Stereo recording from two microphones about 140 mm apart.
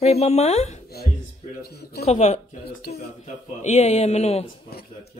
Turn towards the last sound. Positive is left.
turn(degrees=50)  # may be behind; listen again after turning